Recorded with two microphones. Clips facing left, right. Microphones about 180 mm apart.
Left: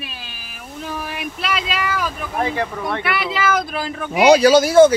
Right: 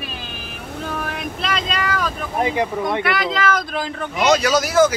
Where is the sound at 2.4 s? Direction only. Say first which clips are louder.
Right 2 dB; 15° right (ahead or behind).